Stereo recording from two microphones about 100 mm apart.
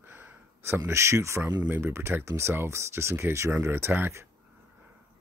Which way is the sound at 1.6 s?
20° right (ahead or behind).